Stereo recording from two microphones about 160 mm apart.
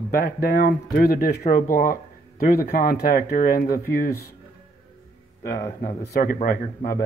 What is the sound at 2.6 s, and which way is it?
A man's voice, 75° left (ahead or behind).